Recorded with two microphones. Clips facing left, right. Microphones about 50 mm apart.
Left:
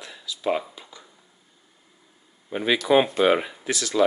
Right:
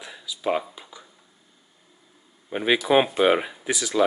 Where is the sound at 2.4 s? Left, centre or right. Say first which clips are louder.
Even; centre.